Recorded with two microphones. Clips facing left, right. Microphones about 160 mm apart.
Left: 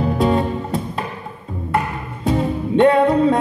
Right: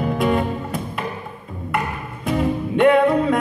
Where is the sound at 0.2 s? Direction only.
30° left (ahead or behind).